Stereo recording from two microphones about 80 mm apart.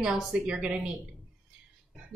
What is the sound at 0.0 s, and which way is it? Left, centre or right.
Speech, centre.